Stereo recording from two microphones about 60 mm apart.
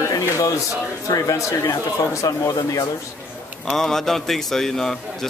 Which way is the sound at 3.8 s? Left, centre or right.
Centre.